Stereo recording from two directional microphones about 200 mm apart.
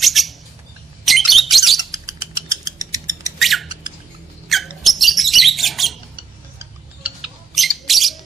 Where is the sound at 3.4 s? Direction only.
Centre (ahead or behind).